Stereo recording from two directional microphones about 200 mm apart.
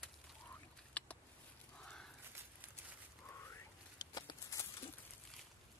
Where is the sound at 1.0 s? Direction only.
5° left (ahead or behind).